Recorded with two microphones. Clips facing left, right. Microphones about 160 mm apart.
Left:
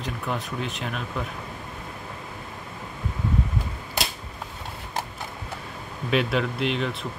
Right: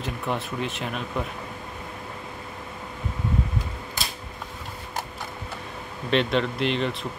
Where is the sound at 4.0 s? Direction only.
70° left (ahead or behind).